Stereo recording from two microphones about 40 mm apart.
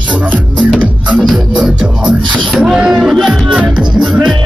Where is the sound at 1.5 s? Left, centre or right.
Right.